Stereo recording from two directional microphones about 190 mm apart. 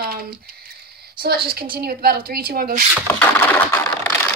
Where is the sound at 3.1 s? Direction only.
10° left (ahead or behind).